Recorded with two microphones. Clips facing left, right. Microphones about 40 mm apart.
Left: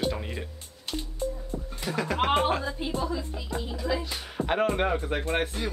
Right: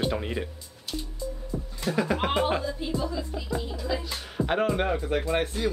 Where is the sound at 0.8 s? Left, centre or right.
Left.